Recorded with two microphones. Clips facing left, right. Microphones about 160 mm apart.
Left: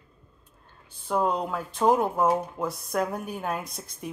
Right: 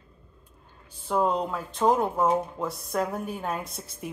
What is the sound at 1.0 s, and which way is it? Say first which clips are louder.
Speech: right 1 dB; centre (ahead or behind).